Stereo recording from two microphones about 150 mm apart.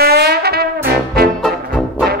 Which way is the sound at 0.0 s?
90° right.